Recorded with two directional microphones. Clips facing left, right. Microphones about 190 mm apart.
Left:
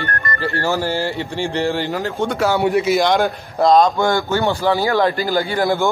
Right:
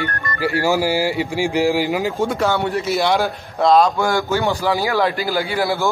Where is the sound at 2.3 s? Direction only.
Centre (ahead or behind).